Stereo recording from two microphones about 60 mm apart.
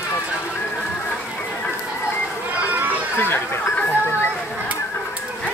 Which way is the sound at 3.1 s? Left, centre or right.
Left.